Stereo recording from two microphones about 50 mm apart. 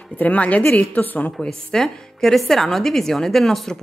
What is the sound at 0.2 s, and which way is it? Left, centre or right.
A woman's voice, left.